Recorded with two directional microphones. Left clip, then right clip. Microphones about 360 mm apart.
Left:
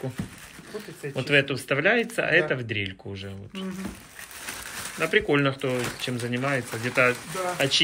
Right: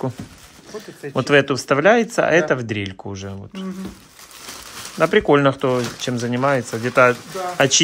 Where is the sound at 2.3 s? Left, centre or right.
Right.